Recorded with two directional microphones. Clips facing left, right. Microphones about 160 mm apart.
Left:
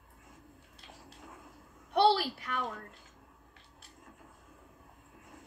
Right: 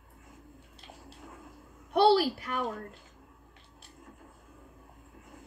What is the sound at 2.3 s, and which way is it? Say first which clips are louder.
Speech: right 3 dB; 45° right (ahead or behind).